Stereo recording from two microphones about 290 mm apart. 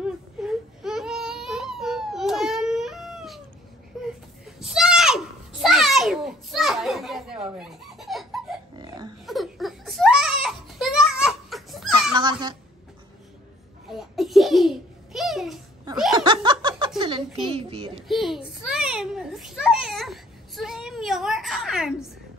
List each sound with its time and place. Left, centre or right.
0.0 s baby cry: centre
3.9 s a sound: centre
7.4 s chicken: centre
8.7 s a sound: centre
9.2 s baby cry: centre
11.9 s dog: centre
13.8 s babbling: centre
16.2 s laughter: centre
17.5 s a sound: centre
18.0 s children playing: centre